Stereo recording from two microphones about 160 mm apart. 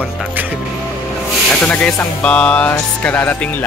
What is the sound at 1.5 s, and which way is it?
Speech, 5° left (ahead or behind).